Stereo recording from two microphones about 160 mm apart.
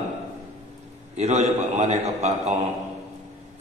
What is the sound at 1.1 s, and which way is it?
A man's voice, 45° right (ahead or behind).